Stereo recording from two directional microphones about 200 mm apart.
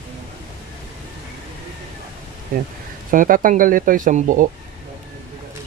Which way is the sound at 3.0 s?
45° right (ahead or behind).